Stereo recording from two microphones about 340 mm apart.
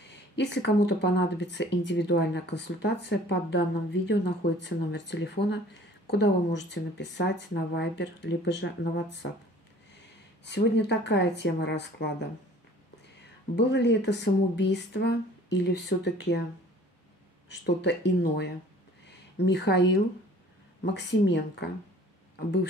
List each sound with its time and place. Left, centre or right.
0.0 s speech: left
10.4 s speech: left
13.6 s speech: left
17.5 s speech: left